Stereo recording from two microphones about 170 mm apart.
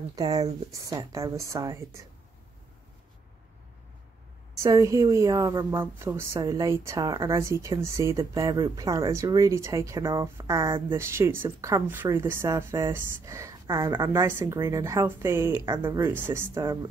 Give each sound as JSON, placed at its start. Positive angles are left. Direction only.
{"t": 0.1, "sound": "a woman's voice", "side_deg": -25}
{"t": 4.6, "sound": "a woman's voice", "side_deg": -20}